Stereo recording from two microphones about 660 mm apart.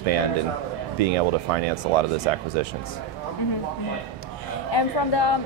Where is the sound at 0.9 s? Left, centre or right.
Right.